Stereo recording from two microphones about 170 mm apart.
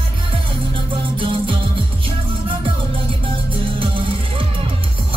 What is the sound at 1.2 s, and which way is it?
Music, 30° right (ahead or behind).